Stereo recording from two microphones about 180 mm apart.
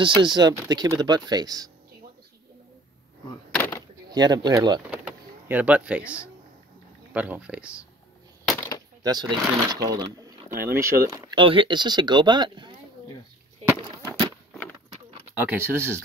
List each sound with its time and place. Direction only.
0.0 s speech: 25° right (ahead or behind)
3.5 s a sound: 10° left (ahead or behind)
4.1 s speech: 25° right (ahead or behind)
4.9 s power windows: 10° right (ahead or behind)
7.2 s speech: 10° right (ahead or behind)
8.5 s a sound: 15° left (ahead or behind)
9.0 s speech: 20° right (ahead or behind)
15.4 s speech: 10° right (ahead or behind)